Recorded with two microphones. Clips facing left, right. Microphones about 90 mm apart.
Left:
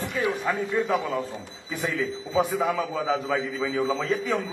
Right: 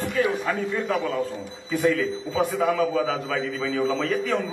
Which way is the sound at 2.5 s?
5° left (ahead or behind).